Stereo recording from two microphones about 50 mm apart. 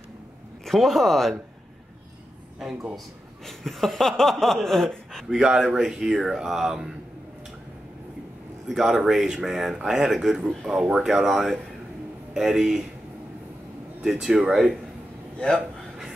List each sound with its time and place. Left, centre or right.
0.7 s a sound: centre
3.4 s a sound: centre
4.6 s speech: centre
5.3 s speech: centre
8.6 s speech: centre
11.1 s a sound: centre
12.4 s speech: centre
14.2 s speech: centre
15.3 s a man's voice: centre